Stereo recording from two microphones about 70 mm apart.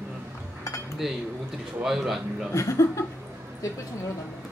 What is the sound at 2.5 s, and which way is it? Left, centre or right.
Speech, left.